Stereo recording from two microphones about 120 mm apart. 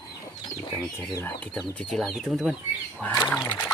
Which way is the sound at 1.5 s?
Centre (ahead or behind).